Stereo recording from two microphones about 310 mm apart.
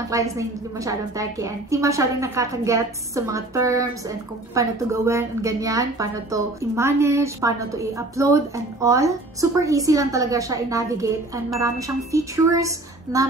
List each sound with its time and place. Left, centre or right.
0.1 s a woman's voice: centre